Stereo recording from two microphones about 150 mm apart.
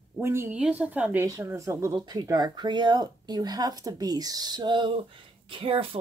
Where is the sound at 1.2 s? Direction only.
20° right (ahead or behind).